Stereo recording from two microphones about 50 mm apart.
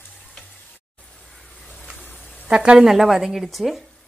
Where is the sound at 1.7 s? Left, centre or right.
Centre.